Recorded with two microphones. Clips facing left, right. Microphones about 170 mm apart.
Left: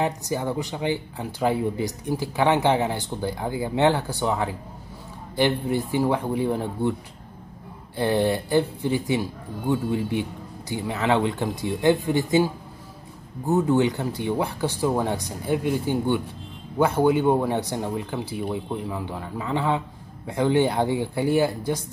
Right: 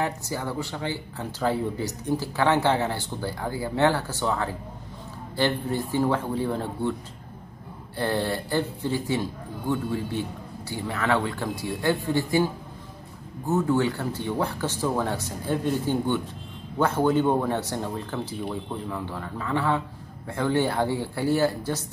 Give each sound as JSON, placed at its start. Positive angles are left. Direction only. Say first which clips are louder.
{"t": 0.0, "sound": "speech", "louder": "left 3 dB", "side_deg": 20}
{"t": 8.0, "sound": "speech", "louder": "left 4 dB", "side_deg": 15}
{"t": 13.5, "sound": "speech", "louder": "left 3 dB", "side_deg": 20}